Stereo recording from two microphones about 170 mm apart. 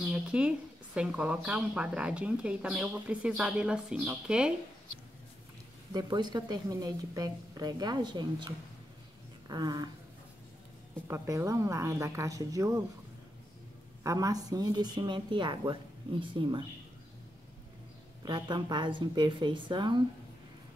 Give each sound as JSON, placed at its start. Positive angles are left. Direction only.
{"t": 0.1, "sound": "speech", "side_deg": -5}
{"t": 5.9, "sound": "a woman's voice", "side_deg": -25}
{"t": 11.1, "sound": "speech", "side_deg": -15}
{"t": 14.0, "sound": "a woman's voice", "side_deg": -20}
{"t": 18.2, "sound": "a woman's voice", "side_deg": -25}